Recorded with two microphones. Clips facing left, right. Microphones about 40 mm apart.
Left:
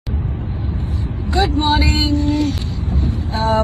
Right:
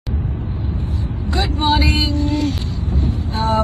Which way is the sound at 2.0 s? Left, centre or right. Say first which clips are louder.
Left 2 dB; left.